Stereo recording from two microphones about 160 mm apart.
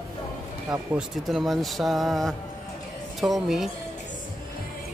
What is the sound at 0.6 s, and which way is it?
Speech, 5° right (ahead or behind).